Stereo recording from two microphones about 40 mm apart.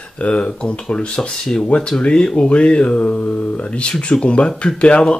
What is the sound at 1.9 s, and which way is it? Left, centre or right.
Speech, left.